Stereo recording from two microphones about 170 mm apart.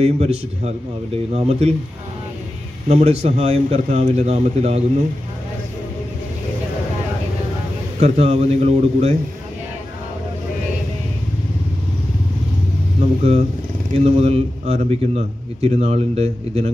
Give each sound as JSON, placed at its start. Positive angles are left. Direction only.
{"t": 0.0, "sound": "a man's voice", "side_deg": -40}
{"t": 2.9, "sound": "a man's voice", "side_deg": -40}
{"t": 8.0, "sound": "a man's voice", "side_deg": -40}
{"t": 13.2, "sound": "a man's voice", "side_deg": -40}